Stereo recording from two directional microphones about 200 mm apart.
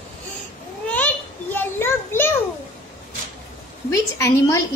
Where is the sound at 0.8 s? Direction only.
5° left (ahead or behind).